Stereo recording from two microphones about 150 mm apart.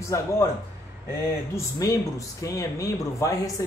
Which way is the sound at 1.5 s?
20° left (ahead or behind).